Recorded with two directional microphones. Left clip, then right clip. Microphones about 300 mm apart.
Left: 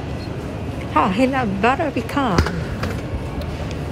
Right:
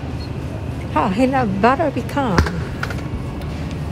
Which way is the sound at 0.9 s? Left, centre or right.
Centre.